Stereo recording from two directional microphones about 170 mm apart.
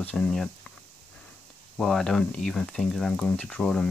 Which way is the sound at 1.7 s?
Centre (ahead or behind).